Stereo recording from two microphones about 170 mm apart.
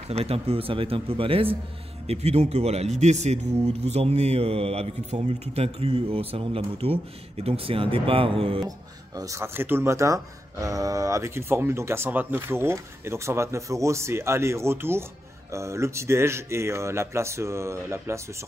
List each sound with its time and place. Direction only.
0.1 s speech: 35° right (ahead or behind)
8.6 s speech: 20° right (ahead or behind)